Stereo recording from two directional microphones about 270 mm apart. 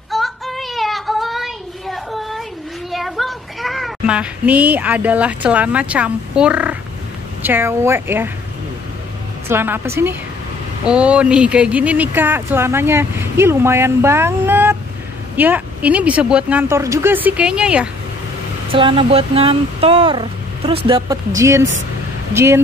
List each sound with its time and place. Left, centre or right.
0.1 s child singing: centre
2.9 s speech: centre
9.5 s speech: centre
18.7 s speech: centre